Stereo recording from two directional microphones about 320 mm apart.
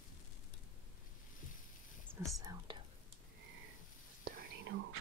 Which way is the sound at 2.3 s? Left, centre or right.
Centre.